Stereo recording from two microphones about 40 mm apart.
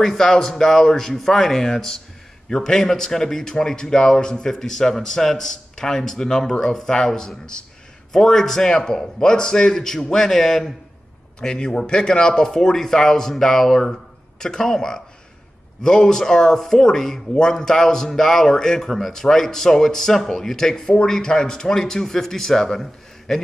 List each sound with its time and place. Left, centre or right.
0.0 s speech: centre
18.9 s speech: centre